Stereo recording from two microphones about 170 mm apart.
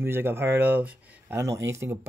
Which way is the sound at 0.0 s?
15° right (ahead or behind).